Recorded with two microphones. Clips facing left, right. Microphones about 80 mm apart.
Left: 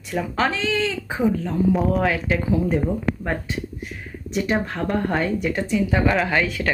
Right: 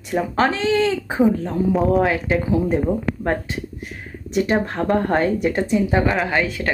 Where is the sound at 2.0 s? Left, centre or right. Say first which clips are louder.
Right 3 dB; right.